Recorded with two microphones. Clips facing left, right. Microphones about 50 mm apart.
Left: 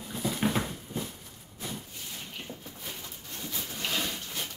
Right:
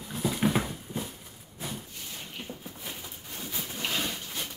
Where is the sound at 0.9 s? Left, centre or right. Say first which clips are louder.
Even; centre.